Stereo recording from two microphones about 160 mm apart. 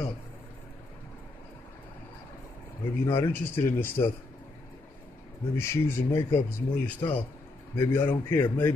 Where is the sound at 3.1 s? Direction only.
15° left (ahead or behind).